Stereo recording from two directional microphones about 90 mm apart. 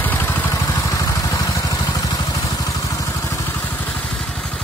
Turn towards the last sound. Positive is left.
turn(degrees=30)  # may be behind; listen again after turning